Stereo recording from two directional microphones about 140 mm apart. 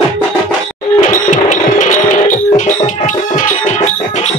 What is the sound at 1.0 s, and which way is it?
Music, 65° left (ahead or behind).